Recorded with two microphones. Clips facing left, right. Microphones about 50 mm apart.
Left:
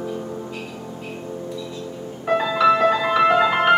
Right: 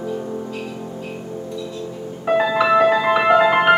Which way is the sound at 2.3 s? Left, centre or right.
Centre.